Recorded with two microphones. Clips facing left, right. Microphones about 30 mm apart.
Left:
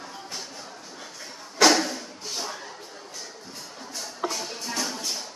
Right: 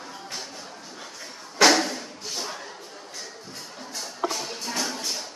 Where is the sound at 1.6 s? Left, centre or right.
Centre.